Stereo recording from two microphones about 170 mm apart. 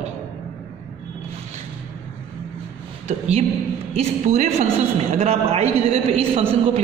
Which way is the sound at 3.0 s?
40° right (ahead or behind).